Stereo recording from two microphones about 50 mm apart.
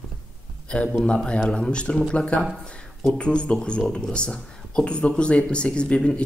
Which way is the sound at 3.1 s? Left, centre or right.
Centre.